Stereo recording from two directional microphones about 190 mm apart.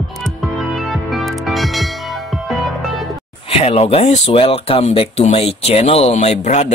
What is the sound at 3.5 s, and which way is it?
Speech, 30° left (ahead or behind).